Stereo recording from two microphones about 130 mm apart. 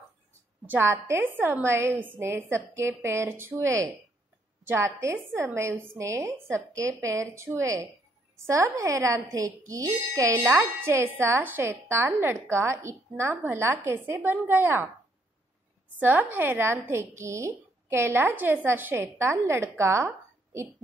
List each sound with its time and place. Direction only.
0.7 s speech: 20° right (ahead or behind)
16.0 s a woman's voice: 15° right (ahead or behind)
19.8 s a sound: 20° right (ahead or behind)